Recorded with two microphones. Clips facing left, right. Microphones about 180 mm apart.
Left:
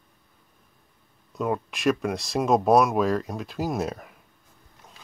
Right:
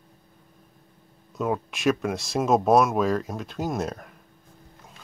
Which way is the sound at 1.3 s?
Centre (ahead or behind).